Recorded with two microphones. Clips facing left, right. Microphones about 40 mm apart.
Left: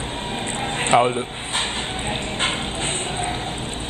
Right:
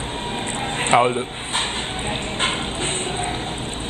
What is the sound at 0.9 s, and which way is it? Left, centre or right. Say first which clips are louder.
Speech: even; centre.